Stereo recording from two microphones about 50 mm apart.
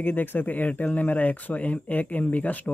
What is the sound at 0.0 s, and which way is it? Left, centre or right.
Speech, left.